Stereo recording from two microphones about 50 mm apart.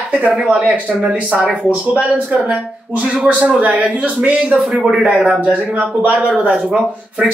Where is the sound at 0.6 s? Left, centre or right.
Right.